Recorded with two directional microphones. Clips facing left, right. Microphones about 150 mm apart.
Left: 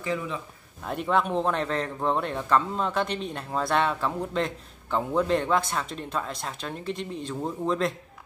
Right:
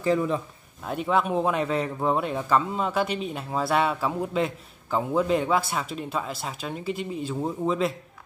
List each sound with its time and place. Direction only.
0.0 s speech: 40° right (ahead or behind)
0.8 s a man's voice: centre (ahead or behind)